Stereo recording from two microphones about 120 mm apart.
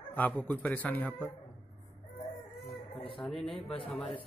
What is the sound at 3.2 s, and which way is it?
Speech, 5° left (ahead or behind).